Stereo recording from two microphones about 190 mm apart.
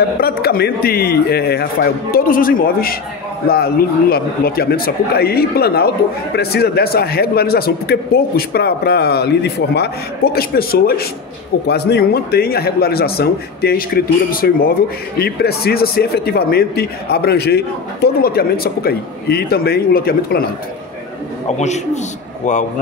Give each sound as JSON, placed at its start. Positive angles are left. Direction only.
{"t": 0.2, "sound": "a man's voice", "side_deg": 50}
{"t": 21.5, "sound": "a man's voice", "side_deg": 35}